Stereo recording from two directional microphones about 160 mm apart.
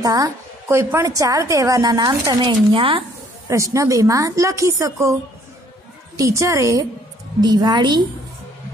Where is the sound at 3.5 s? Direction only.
20° right (ahead or behind).